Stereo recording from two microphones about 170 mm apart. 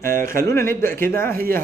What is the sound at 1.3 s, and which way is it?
Speech, 60° right (ahead or behind).